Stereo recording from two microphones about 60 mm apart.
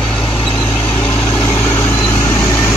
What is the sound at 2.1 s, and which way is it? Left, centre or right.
Vehicle, left.